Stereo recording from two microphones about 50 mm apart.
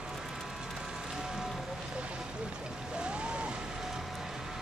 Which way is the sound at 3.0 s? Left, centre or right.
Centre.